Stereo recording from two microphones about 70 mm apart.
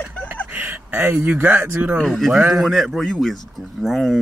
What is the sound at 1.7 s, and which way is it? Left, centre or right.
Speech, right.